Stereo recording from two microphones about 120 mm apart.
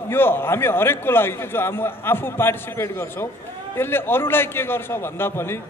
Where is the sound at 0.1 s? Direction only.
20° left (ahead or behind).